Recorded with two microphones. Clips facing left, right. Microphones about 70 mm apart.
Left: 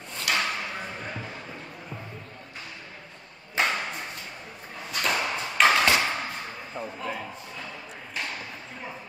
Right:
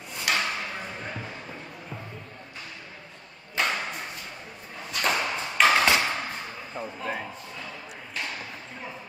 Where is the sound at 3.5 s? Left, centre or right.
Left.